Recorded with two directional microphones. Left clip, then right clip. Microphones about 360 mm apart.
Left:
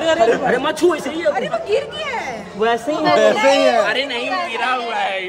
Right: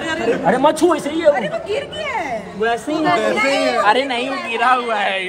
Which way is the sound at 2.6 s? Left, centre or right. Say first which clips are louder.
Left 2 dB; centre.